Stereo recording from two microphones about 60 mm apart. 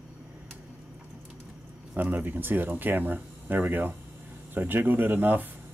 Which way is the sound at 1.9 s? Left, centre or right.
Right.